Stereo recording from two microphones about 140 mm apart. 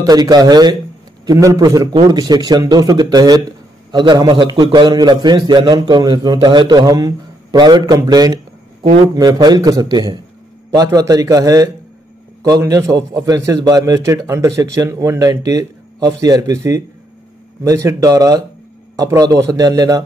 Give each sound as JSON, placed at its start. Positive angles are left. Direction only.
{"t": 0.0, "sound": "a man's voice", "side_deg": -30}